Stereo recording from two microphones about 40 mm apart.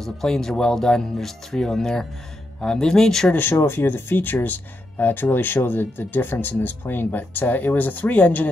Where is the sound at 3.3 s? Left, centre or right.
Left.